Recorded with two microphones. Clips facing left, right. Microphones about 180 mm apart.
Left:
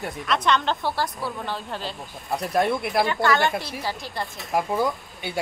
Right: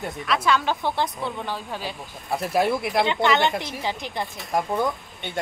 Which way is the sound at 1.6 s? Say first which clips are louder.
Even; 5° right (ahead or behind).